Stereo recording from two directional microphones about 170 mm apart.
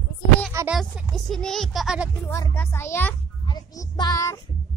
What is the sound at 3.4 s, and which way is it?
Child singing, 25° left (ahead or behind).